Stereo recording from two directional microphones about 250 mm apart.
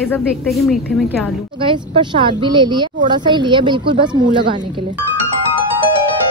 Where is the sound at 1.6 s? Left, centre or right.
Centre.